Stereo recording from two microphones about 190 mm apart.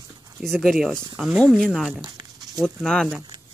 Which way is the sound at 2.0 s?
20° right (ahead or behind).